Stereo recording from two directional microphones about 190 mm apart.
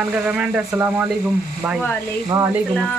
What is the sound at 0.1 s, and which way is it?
Speech, 5° right (ahead or behind).